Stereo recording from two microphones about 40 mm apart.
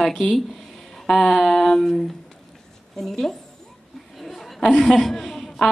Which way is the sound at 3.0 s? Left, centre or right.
Centre.